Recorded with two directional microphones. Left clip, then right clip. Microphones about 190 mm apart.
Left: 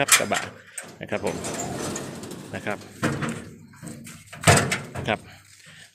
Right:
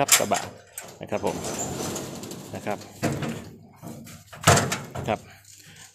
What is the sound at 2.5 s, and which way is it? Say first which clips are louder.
Speech: left 1 dB; 10° left (ahead or behind).